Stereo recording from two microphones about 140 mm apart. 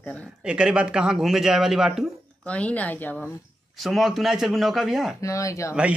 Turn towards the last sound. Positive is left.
turn(degrees=20)  # may be behind; listen again after turning